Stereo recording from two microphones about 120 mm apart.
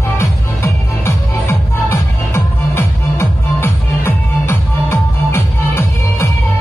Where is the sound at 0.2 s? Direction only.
20° left (ahead or behind).